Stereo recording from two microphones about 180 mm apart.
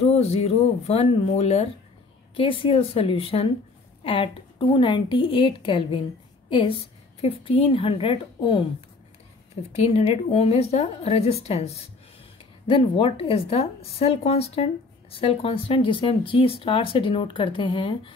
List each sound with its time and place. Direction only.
0.0 s a woman's voice: 35° left (ahead or behind)
9.7 s a woman's voice: 35° left (ahead or behind)